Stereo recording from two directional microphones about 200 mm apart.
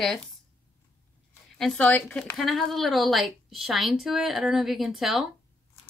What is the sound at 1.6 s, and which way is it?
A woman's voice, 5° left (ahead or behind).